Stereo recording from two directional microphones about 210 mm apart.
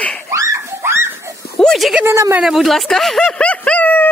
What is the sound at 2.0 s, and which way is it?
Speech, 10° right (ahead or behind).